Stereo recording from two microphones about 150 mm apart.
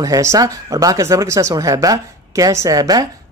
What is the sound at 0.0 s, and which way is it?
Speech, 20° right (ahead or behind).